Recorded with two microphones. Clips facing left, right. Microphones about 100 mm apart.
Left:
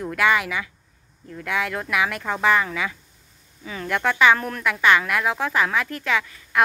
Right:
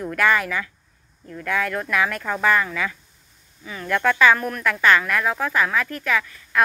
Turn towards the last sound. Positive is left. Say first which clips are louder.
# even
turn(degrees=25)  # may be behind; listen again after turning